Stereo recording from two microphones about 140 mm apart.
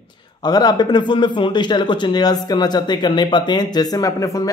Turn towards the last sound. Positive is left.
turn(degrees=25)  # may be behind; listen again after turning